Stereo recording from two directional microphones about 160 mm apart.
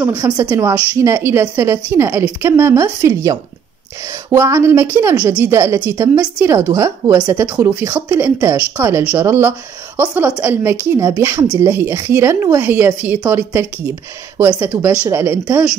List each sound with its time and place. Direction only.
0.2 s a woman's voice: 20° right (ahead or behind)